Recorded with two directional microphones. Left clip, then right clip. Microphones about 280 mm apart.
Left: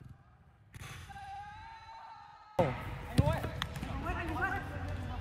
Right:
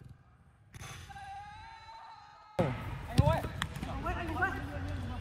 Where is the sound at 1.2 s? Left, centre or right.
Right.